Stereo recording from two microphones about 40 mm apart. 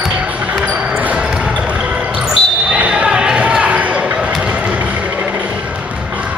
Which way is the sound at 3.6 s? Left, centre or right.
Right.